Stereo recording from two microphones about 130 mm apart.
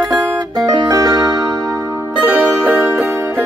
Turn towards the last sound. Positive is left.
turn(degrees=-20)  # may be behind; listen again after turning